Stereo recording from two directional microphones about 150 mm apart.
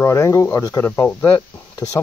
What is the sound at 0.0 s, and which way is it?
Speech, 20° left (ahead or behind).